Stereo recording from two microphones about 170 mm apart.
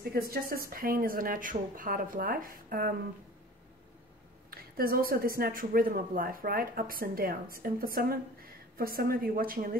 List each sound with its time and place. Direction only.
0.1 s a woman's voice: 60° right (ahead or behind)
4.5 s a woman's voice: 60° right (ahead or behind)